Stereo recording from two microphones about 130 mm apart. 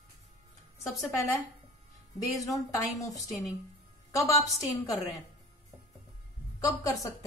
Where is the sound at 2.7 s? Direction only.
25° left (ahead or behind).